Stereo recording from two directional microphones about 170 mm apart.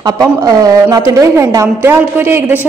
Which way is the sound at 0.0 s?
20° right (ahead or behind).